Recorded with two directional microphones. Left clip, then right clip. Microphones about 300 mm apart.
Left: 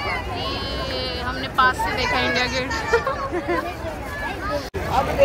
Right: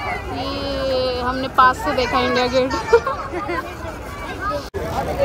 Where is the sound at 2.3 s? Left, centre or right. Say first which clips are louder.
Right 5 dB; left.